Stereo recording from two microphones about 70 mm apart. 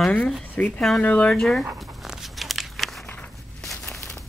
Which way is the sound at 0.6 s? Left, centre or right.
Left.